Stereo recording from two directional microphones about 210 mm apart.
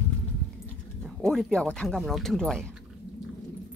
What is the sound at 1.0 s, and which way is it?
Speech, centre (ahead or behind).